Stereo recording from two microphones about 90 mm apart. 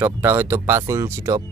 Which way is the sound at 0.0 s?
25° right (ahead or behind).